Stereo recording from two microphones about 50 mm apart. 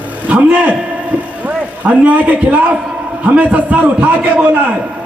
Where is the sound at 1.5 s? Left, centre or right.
Right.